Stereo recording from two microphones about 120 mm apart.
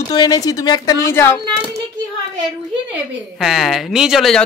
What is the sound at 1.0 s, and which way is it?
Speech, 20° left (ahead or behind).